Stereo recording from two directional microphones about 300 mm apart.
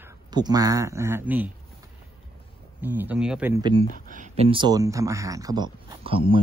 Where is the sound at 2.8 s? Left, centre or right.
Centre.